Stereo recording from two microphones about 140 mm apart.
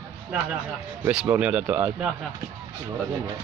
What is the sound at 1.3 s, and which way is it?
Speech, 10° right (ahead or behind).